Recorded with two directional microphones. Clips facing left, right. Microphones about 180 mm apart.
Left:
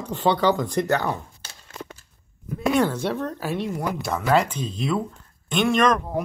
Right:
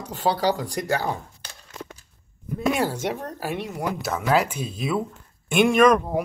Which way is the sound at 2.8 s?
10° right (ahead or behind).